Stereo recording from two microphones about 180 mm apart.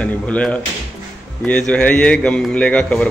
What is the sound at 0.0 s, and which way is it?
A man's voice, 5° left (ahead or behind).